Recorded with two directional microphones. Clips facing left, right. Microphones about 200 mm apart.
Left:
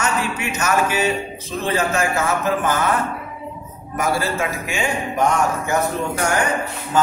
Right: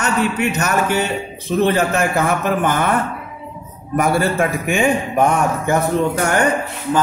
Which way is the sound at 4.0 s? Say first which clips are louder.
Right 5 dB; 55° right (ahead or behind).